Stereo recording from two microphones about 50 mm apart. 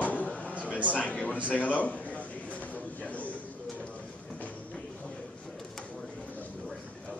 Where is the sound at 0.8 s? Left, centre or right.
Left.